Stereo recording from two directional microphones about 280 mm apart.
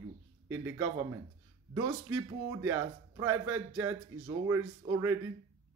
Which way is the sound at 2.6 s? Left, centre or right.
Centre.